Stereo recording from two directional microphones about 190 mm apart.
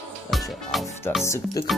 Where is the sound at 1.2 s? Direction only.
15° left (ahead or behind).